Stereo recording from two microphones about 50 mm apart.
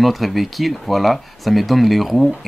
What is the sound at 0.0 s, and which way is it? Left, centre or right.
Speech, centre.